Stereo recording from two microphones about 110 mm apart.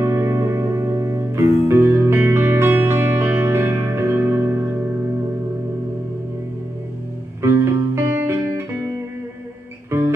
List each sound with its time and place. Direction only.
0.0 s music: 25° right (ahead or behind)
7.4 s music: 25° right (ahead or behind)
9.8 s music: 20° right (ahead or behind)